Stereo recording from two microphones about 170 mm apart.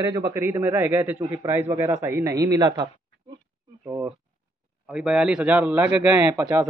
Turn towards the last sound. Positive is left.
turn(degrees=-20)  # may be behind; listen again after turning